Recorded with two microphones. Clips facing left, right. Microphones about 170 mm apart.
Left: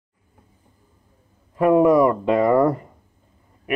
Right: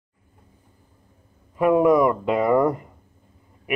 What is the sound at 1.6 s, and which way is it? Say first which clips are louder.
Speech: left 2 dB; 5° right (ahead or behind).